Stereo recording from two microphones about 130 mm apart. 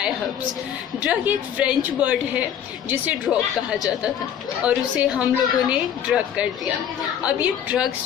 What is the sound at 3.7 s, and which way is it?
A woman's voice, 5° right (ahead or behind).